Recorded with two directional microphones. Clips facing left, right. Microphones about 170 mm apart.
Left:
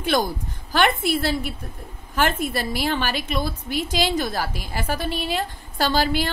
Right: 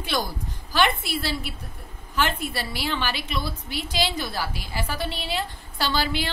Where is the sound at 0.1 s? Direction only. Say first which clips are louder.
Left 2 dB; 50° left (ahead or behind).